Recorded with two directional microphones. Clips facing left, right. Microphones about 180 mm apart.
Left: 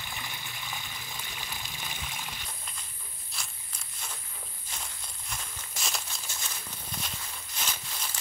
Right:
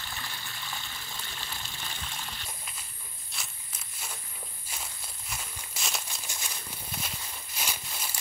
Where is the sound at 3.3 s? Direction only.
5° right (ahead or behind).